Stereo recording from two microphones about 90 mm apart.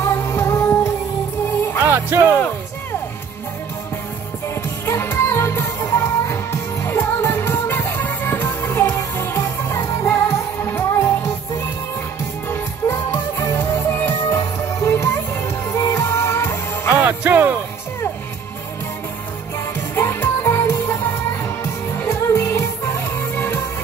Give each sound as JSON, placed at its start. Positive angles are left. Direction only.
{"t": 0.0, "sound": "music", "side_deg": 30}
{"t": 1.8, "sound": "music", "side_deg": -25}
{"t": 4.8, "sound": "music", "side_deg": 25}
{"t": 12.4, "sound": "music", "side_deg": 30}
{"t": 16.9, "sound": "music", "side_deg": -20}
{"t": 20.0, "sound": "music", "side_deg": 30}
{"t": 22.3, "sound": "music", "side_deg": 30}